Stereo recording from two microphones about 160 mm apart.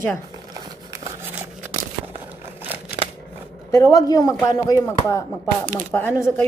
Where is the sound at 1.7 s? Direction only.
35° right (ahead or behind).